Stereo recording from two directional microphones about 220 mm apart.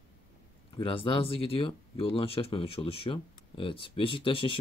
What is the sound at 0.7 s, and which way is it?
Speech, 25° left (ahead or behind).